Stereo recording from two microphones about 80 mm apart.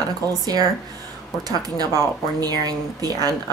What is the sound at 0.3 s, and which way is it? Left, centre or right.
Speech, right.